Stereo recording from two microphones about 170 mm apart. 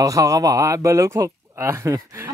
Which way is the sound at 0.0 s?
20° right (ahead or behind).